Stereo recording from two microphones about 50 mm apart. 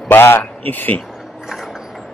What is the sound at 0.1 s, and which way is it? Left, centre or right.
Speech, left.